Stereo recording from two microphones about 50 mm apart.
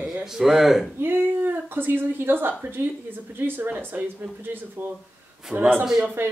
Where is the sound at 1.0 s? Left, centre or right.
Right.